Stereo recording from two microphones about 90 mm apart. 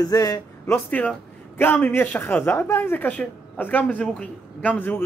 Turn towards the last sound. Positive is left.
turn(degrees=20)  # may be behind; listen again after turning